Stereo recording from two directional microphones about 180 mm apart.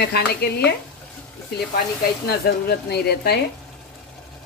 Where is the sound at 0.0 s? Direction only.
65° left (ahead or behind).